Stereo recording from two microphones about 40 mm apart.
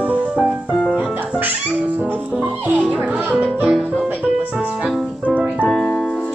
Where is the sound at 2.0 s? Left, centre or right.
Right.